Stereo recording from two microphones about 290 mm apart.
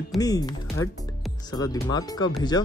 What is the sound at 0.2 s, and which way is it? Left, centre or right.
Speech, centre.